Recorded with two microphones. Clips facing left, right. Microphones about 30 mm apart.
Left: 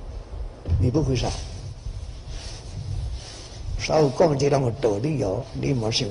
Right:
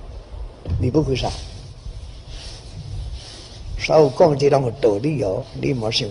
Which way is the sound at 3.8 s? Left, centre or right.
Right.